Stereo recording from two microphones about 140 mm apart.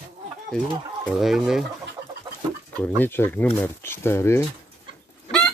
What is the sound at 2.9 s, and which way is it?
Speech, 15° left (ahead or behind).